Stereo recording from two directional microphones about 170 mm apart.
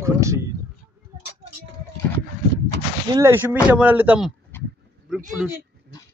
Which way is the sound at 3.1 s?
15° right (ahead or behind).